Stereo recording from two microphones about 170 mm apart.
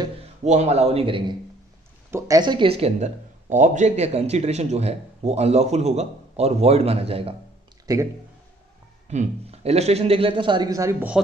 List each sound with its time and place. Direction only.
0.5 s speech: 40° right (ahead or behind)
2.0 s speech: 20° right (ahead or behind); by 7.3 s 35° right (ahead or behind)
7.8 s speech: 20° right (ahead or behind)
9.1 s speech: 40° right (ahead or behind); by 11.1 s 15° right (ahead or behind)